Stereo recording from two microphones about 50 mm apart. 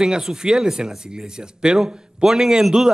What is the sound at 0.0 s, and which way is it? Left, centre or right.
Speech, centre.